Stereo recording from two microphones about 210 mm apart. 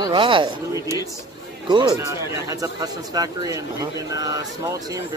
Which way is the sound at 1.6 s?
20° right (ahead or behind).